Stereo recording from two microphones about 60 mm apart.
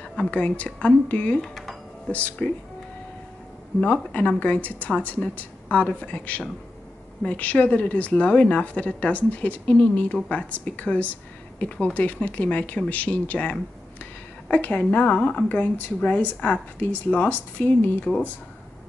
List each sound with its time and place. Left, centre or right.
0.0 s a woman's voice: centre
1.4 s a sound: centre
2.0 s a woman's voice: left
3.8 s a woman's voice: left